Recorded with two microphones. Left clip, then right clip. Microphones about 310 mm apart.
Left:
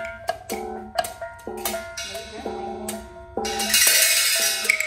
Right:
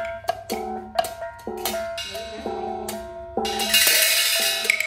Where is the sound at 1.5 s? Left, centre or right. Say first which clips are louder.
Right 3 dB; right.